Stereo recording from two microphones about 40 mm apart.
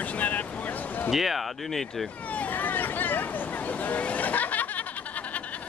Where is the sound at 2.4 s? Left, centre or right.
Left.